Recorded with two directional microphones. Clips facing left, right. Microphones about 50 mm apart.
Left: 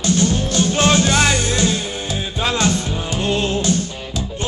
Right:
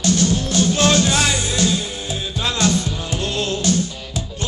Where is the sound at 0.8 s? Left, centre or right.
Left.